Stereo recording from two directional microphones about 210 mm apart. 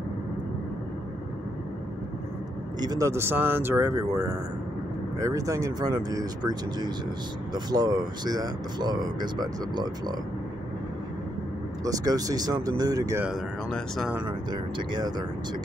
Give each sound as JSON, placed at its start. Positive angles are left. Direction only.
{"t": 2.8, "sound": "speech", "side_deg": -15}
{"t": 11.8, "sound": "speech", "side_deg": -15}
{"t": 13.3, "sound": "speech", "side_deg": 0}
{"t": 14.2, "sound": "speech", "side_deg": -20}